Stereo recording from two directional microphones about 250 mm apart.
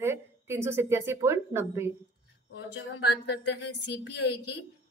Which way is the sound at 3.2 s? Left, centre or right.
Left.